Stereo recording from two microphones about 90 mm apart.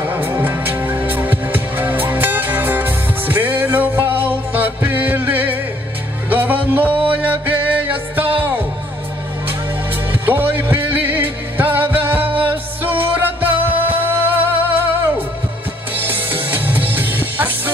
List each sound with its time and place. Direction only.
0.0 s music: 25° right (ahead or behind)
10.2 s music: 20° right (ahead or behind)